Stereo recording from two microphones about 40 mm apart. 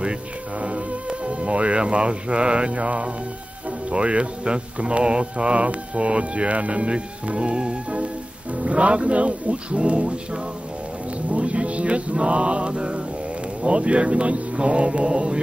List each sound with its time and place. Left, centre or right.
0.6 s speech: right
11.2 s mantra: right
13.6 s speech: right